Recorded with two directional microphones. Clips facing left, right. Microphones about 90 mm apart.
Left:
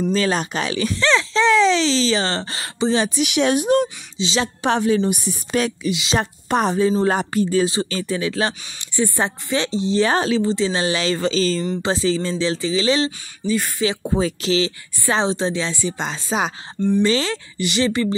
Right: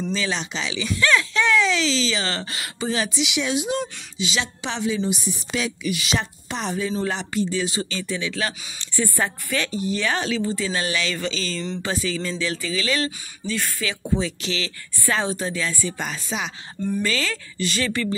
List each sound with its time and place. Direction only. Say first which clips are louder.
0.1 s a woman's voice: left 6 dB; 45° left (ahead or behind)
0.9 s a woman's voice: left 1 dB; 30° left (ahead or behind)
3.2 s a woman's voice: left 6 dB; 55° left (ahead or behind)
4.2 s speech: left 5 dB; 30° left (ahead or behind)
4.6 s a woman's voice: left 8 dB; 50° left (ahead or behind)
5.9 s speech: left 3 dB; 25° left (ahead or behind)
6.1 s a woman's voice: left 7 dB; 45° left (ahead or behind)
8.7 s speech: left 2 dB; 20° left (ahead or behind); by 10.4 s 35° left (ahead or behind)
10.5 s a woman's voice: left 5 dB; 25° left (ahead or behind)
13.5 s speech: left 6 dB; 15° left (ahead or behind)
13.8 s a woman's voice: left 4 dB; 40° left (ahead or behind)
15.0 s speech: left 4 dB; 20° left (ahead or behind)
17.6 s speech: left 5 dB; 15° left (ahead or behind)